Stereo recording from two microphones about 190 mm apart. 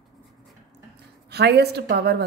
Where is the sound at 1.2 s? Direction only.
60° right (ahead or behind).